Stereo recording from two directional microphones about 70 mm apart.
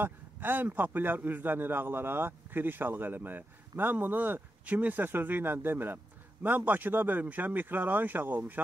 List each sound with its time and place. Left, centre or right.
0.0 s a man's voice: right